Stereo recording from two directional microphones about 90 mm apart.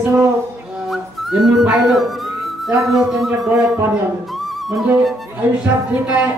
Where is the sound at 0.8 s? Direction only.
Centre (ahead or behind).